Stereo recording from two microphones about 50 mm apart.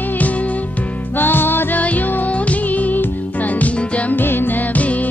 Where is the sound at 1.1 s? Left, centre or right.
Left.